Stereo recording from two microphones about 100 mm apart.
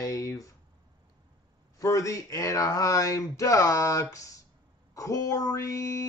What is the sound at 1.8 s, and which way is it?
Speech, 35° left (ahead or behind).